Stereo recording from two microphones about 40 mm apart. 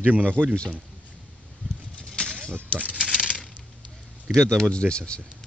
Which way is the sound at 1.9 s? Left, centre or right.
Centre.